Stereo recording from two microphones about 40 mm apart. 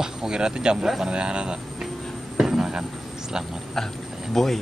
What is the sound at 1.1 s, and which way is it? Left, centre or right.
Speech, right.